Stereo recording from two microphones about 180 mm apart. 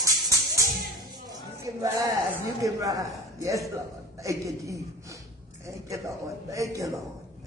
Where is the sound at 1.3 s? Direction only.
20° right (ahead or behind).